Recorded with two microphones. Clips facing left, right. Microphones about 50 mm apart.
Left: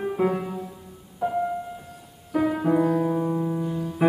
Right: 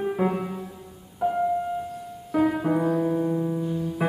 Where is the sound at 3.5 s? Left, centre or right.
Left.